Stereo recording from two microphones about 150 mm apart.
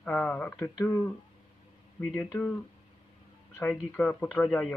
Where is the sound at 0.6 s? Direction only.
20° left (ahead or behind).